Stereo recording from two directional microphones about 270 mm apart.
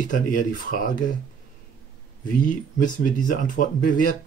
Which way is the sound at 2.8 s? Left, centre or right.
Left.